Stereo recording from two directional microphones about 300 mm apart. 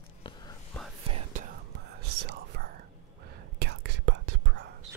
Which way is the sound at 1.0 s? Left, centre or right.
Right.